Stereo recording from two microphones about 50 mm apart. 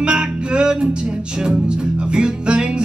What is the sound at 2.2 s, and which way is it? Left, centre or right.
Music, centre.